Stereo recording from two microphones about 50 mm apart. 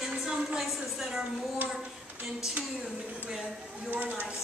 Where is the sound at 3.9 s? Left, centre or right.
Right.